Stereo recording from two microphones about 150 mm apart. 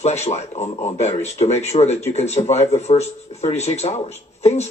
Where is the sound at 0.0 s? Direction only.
50° left (ahead or behind).